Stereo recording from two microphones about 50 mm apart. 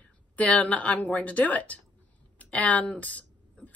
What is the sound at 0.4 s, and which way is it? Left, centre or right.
A woman's voice, left.